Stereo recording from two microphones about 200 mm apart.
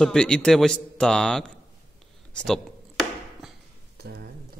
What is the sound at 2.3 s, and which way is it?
Chop, 5° left (ahead or behind).